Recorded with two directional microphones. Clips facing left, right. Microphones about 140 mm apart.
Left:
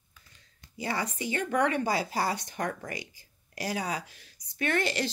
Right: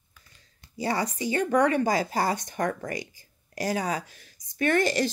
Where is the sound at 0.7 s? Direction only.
35° right (ahead or behind).